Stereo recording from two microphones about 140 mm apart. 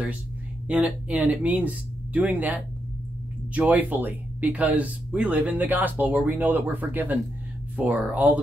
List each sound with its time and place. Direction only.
0.7 s speech: 10° right (ahead or behind)